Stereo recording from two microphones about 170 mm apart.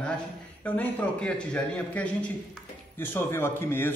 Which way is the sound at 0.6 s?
10° left (ahead or behind).